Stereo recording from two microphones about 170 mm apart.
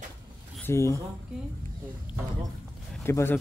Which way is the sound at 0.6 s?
15° left (ahead or behind).